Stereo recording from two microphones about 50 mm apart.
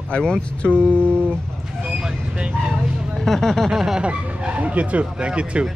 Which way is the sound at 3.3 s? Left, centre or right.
Centre.